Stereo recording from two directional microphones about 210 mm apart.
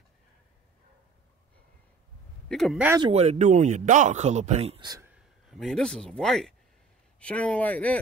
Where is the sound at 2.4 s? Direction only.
Centre (ahead or behind).